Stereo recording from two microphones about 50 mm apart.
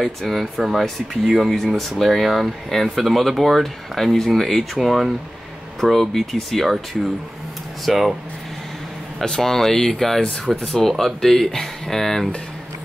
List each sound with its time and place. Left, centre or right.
0.2 s speech: centre
9.2 s speech: centre